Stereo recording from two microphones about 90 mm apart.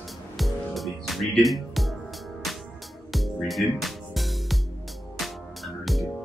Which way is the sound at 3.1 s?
Centre (ahead or behind).